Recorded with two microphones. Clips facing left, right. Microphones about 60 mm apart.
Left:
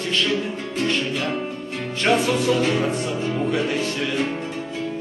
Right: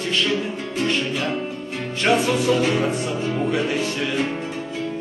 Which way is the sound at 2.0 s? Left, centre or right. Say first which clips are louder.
Even; centre.